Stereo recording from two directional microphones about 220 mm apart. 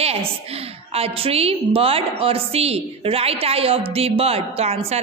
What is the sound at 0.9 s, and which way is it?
A woman's voice, 25° right (ahead or behind).